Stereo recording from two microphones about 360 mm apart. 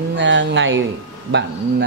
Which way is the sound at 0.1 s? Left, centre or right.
Right.